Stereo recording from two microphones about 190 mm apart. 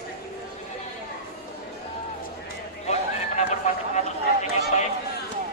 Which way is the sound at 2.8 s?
35° left (ahead or behind).